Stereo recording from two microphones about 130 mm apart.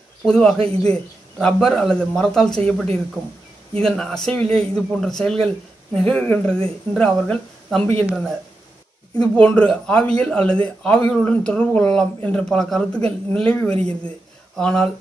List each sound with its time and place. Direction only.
0.2 s a man's voice: 5° left (ahead or behind)
0.6 s a man's voice: 50° right (ahead or behind)
1.4 s a man's voice: 5° left (ahead or behind)